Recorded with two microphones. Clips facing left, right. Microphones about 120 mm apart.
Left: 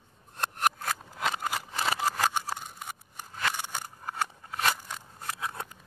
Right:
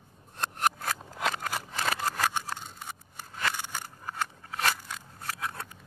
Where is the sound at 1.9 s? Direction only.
10° left (ahead or behind).